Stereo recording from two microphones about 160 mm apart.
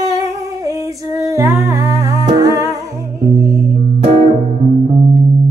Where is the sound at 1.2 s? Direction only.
15° right (ahead or behind).